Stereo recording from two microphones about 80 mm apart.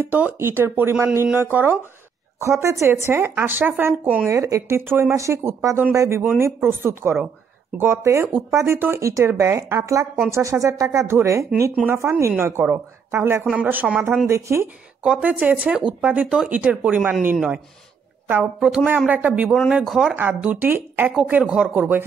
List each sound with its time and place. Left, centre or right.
0.0 s speech: centre
2.4 s speech: right
4.3 s speech: right
9.3 s speech: right
9.7 s speech: right
14.2 s speech: right
15.0 s speech: centre
18.4 s speech: centre
19.7 s speech: centre
20.2 s speech: centre
21.5 s speech: centre